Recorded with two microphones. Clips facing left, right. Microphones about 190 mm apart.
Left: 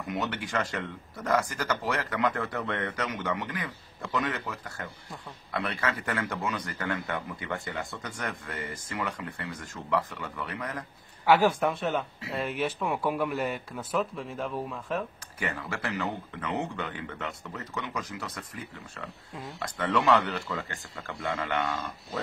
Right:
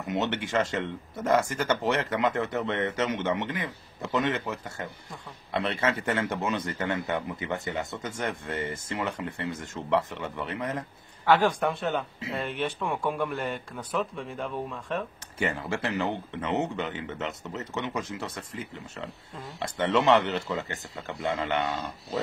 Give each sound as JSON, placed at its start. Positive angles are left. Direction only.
{"t": 0.0, "sound": "speech", "side_deg": -25}
{"t": 11.2, "sound": "speech", "side_deg": 10}
{"t": 15.3, "sound": "speech", "side_deg": -25}